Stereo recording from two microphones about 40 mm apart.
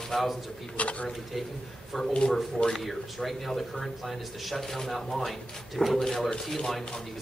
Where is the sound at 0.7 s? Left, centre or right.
Left.